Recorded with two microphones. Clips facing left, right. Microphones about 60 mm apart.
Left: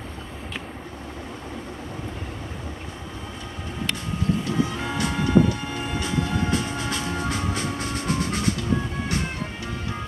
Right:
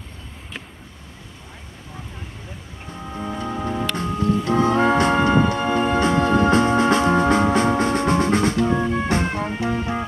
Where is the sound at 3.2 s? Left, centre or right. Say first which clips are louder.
Right 10 dB; right.